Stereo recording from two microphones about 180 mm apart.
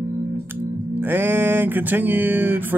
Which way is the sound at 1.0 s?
10° right (ahead or behind).